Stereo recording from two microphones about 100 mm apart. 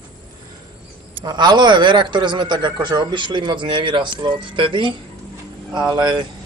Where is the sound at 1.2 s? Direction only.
45° right (ahead or behind).